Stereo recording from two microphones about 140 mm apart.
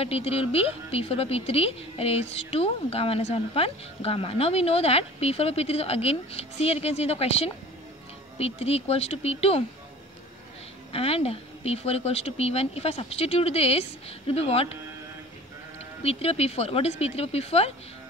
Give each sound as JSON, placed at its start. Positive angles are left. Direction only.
{"t": 0.0, "sound": "a woman's voice", "side_deg": 45}
{"t": 10.9, "sound": "a woman's voice", "side_deg": 45}
{"t": 16.0, "sound": "a woman's voice", "side_deg": 45}